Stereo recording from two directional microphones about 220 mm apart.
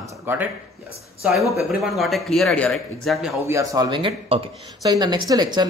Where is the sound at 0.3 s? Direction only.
10° right (ahead or behind).